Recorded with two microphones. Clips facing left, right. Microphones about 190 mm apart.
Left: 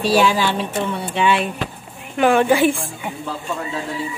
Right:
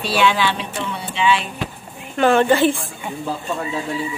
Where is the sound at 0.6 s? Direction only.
50° left (ahead or behind).